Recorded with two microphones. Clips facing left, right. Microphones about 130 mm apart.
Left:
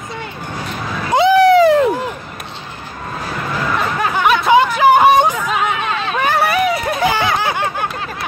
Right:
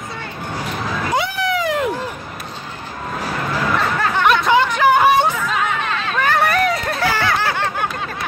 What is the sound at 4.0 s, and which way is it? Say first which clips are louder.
Music: left 2 dB; 5° left (ahead or behind).